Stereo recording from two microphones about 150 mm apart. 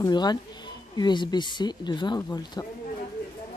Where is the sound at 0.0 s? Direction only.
30° left (ahead or behind).